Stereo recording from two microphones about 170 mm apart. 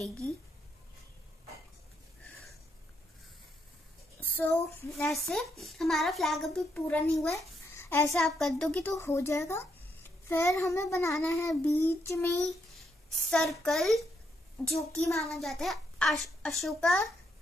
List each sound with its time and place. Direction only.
4.2 s child singing: 10° left (ahead or behind)
5.3 s a child's voice: centre (ahead or behind)
7.7 s a sound: 15° left (ahead or behind)
8.2 s a child's voice: centre (ahead or behind)
8.9 s a child's voice: 15° left (ahead or behind)
12.7 s a child's voice: centre (ahead or behind)